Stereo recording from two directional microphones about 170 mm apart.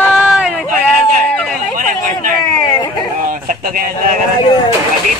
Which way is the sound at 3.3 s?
50° right (ahead or behind).